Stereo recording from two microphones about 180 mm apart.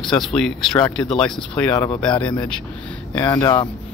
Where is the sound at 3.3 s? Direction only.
25° left (ahead or behind).